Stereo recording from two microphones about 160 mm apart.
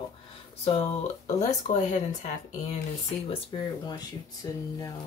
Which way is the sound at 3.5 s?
30° left (ahead or behind).